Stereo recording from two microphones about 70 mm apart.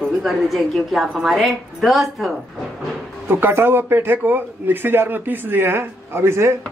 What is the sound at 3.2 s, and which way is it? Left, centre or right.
A man's voice, right.